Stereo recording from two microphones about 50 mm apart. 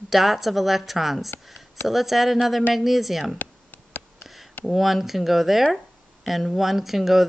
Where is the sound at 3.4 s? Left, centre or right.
Left.